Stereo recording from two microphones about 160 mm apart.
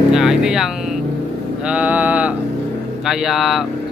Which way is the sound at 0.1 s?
5° right (ahead or behind).